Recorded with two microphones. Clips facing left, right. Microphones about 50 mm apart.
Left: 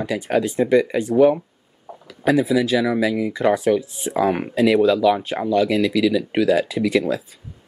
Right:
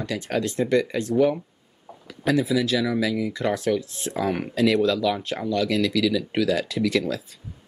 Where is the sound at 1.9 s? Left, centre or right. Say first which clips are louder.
Left 6 dB; left.